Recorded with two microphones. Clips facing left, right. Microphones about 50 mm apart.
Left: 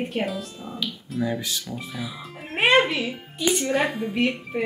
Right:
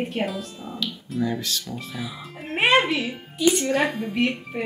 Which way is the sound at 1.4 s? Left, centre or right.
Centre.